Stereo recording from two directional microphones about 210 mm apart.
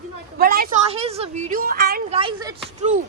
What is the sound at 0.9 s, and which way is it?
A woman's voice, 30° right (ahead or behind).